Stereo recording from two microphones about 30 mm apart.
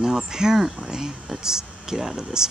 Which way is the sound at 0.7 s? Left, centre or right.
Right.